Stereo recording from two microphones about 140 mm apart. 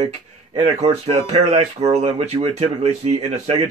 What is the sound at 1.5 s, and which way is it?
Speech, 45° right (ahead or behind).